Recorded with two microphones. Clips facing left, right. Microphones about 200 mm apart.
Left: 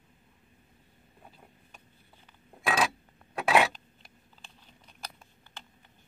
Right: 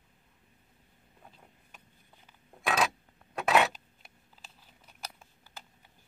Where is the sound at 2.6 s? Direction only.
Centre (ahead or behind).